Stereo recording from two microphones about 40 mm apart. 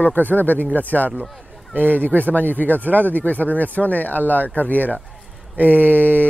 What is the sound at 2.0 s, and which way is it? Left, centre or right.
Speech, left.